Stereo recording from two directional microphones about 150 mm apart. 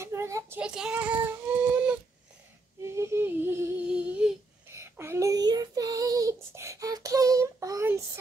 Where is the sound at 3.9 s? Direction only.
10° right (ahead or behind).